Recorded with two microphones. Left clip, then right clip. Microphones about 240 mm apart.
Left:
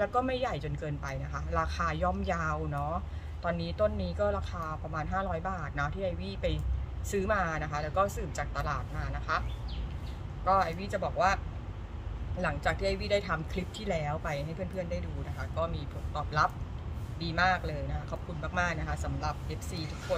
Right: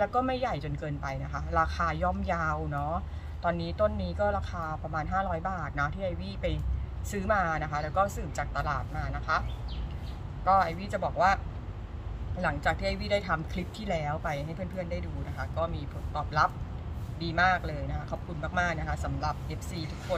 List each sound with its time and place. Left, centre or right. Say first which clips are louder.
0.0 s speech: right 2 dB; centre
10.4 s speech: right 3 dB; centre
12.4 s speech: right 2 dB; centre